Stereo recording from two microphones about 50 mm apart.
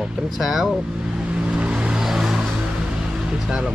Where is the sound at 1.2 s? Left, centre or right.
Right.